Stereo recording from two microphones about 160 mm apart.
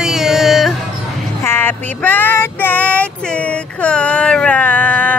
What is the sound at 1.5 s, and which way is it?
Child singing, 15° left (ahead or behind).